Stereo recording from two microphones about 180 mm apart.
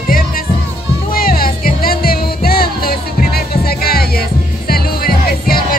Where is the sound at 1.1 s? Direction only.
55° left (ahead or behind).